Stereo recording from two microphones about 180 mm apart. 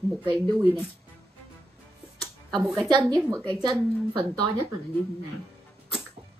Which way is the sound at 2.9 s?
20° right (ahead or behind).